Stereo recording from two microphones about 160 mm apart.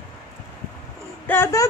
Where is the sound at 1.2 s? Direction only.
15° left (ahead or behind).